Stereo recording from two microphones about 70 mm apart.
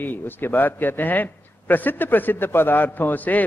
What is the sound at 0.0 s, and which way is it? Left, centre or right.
A man's voice, left.